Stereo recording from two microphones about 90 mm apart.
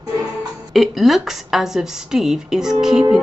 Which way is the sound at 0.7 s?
Centre (ahead or behind).